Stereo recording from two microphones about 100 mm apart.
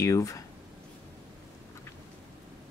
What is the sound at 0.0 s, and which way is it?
Speech, 35° left (ahead or behind).